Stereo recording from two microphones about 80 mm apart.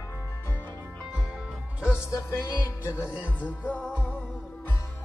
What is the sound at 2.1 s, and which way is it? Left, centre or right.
Music, left.